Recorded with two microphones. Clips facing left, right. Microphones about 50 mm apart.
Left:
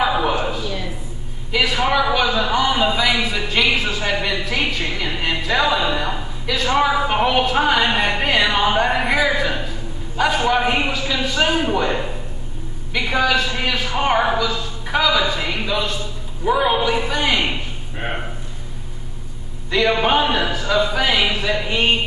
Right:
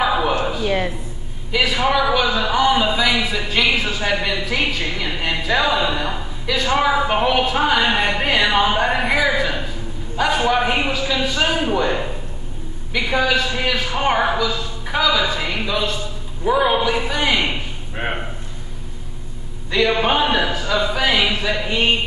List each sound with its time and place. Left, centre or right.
0.0 s a sound: centre
0.7 s speech: right
1.5 s a man's voice: centre
19.7 s a man's voice: centre